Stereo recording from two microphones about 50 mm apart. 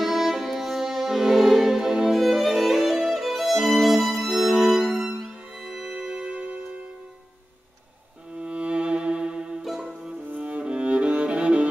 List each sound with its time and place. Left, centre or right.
0.0 s music: centre
3.1 s violin: centre
4.3 s music: centre
6.0 s music: centre
8.4 s violin: right
9.7 s music: centre
10.3 s music: right